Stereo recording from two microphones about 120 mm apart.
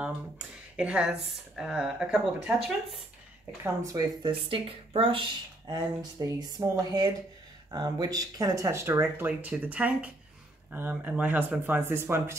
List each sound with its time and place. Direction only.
0.7 s speech: 10° right (ahead or behind)
3.6 s speech: 30° right (ahead or behind)
4.3 s speech: 45° right (ahead or behind)
5.7 s speech: 35° right (ahead or behind)